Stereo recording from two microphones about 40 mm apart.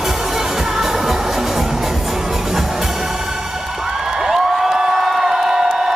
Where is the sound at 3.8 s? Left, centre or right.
Centre.